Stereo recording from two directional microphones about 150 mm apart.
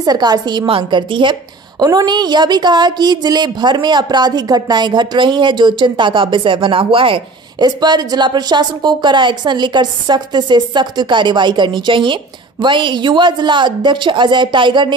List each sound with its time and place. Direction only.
0.0 s speech: 25° right (ahead or behind)